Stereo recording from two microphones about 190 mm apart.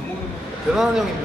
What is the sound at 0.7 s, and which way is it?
Speech, centre (ahead or behind).